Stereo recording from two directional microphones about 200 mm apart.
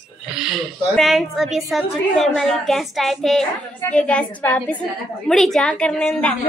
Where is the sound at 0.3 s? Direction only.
Centre (ahead or behind).